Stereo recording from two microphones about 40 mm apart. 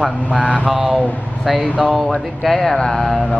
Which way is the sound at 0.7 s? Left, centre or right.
Centre.